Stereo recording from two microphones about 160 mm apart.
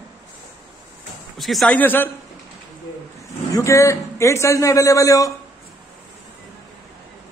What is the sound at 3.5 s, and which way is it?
A man's voice, 20° left (ahead or behind).